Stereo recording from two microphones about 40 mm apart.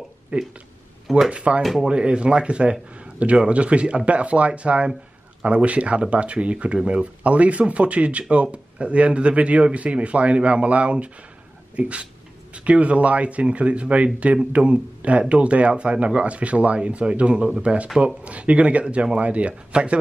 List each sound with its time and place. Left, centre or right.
0.3 s speech: right
1.6 s speech: centre
1.9 s speech: right